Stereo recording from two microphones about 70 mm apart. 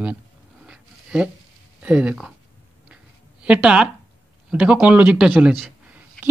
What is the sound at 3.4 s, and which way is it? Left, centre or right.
Speech, centre.